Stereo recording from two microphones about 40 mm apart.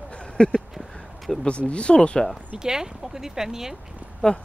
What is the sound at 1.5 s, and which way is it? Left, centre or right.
Speech, left.